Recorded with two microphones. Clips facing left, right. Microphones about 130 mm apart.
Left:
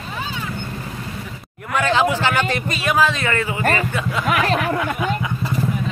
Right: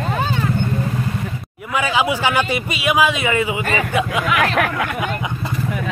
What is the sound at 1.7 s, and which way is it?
Speech, 10° right (ahead or behind).